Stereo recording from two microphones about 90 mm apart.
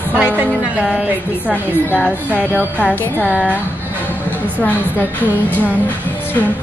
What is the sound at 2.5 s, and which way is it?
Music, 15° left (ahead or behind).